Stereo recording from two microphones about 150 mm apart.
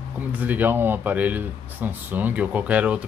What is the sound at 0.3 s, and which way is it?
Speech, 10° right (ahead or behind).